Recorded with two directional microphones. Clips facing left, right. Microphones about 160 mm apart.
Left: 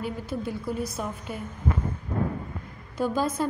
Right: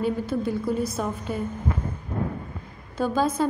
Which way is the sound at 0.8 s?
15° left (ahead or behind).